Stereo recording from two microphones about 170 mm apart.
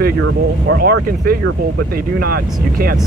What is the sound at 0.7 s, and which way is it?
Speech, 75° right (ahead or behind).